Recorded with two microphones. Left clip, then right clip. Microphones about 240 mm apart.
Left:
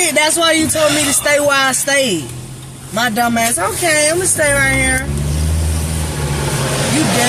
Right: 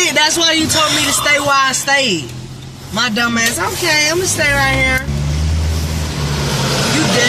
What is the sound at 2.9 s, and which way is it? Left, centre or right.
Speech, centre.